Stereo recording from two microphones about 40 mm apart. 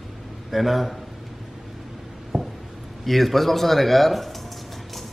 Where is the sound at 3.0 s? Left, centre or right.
Centre.